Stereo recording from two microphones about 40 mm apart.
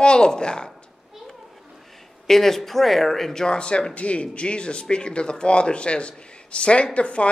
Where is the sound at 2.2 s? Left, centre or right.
Centre.